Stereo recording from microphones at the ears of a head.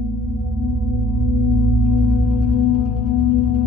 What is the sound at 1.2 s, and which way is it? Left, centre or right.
Music, left.